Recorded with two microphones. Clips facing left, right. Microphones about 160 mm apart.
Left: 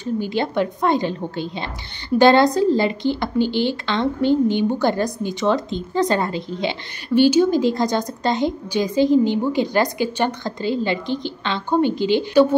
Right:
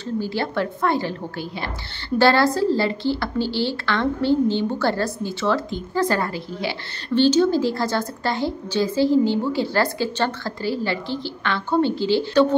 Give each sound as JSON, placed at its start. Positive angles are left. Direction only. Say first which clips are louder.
{"t": 0.0, "sound": "a woman's voice", "louder": "left 3 dB", "side_deg": 20}